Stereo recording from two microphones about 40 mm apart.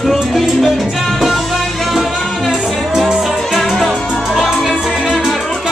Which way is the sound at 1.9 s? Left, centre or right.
Centre.